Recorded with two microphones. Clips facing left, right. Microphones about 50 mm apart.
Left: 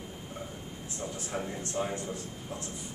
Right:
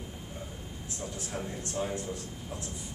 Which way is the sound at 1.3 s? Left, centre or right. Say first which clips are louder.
Left 2 dB; centre.